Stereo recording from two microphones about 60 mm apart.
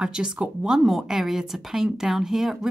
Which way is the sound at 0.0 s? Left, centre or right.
Centre.